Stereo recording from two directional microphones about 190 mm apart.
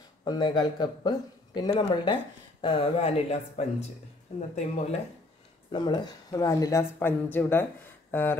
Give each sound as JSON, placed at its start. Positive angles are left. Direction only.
{"t": 0.2, "sound": "speech", "side_deg": 20}
{"t": 5.7, "sound": "speech", "side_deg": 25}
{"t": 8.1, "sound": "a sound", "side_deg": 10}